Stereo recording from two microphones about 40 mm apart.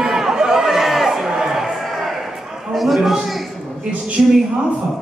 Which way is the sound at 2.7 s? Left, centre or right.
Centre.